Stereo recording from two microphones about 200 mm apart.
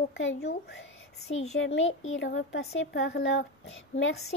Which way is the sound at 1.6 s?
70° left (ahead or behind).